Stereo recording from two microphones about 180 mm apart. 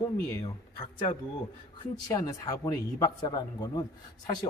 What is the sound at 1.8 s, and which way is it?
A man's voice, 20° left (ahead or behind).